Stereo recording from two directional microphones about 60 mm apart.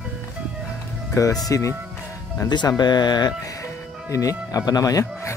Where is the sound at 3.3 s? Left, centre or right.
Left.